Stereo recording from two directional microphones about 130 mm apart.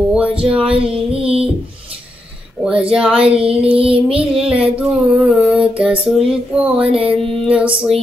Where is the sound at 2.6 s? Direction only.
10° right (ahead or behind).